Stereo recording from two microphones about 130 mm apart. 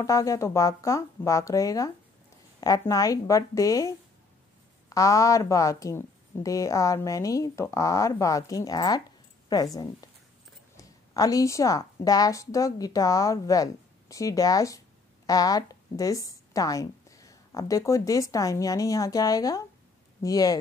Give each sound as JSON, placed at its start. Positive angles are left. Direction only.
{"t": 0.0, "sound": "a woman's voice", "side_deg": 25}